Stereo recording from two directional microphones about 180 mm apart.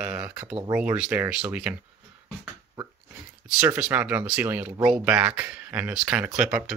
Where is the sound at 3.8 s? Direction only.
5° right (ahead or behind).